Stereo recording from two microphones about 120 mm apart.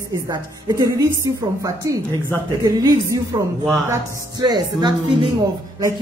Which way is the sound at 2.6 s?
30° right (ahead or behind).